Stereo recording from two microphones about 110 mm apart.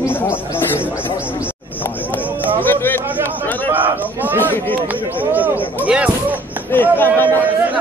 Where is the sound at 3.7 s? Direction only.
15° right (ahead or behind).